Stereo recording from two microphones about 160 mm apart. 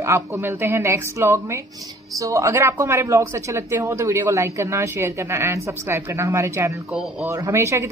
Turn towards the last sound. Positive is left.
turn(degrees=-15)  # may be behind; listen again after turning